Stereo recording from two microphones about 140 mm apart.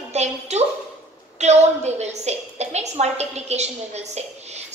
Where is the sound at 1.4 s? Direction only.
50° right (ahead or behind).